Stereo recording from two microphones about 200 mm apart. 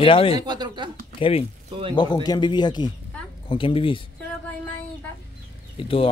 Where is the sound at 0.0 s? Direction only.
25° left (ahead or behind).